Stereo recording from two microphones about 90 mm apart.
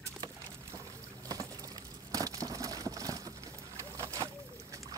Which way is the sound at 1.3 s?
40° right (ahead or behind).